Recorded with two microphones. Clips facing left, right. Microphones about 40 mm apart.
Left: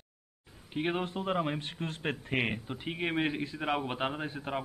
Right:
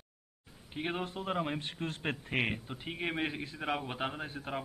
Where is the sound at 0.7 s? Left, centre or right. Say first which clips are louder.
Left 4 dB; centre.